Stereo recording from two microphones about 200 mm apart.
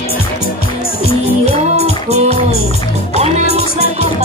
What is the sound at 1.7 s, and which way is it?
Music, 30° right (ahead or behind).